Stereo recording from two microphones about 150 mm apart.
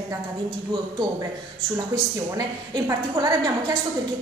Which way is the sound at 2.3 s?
25° right (ahead or behind).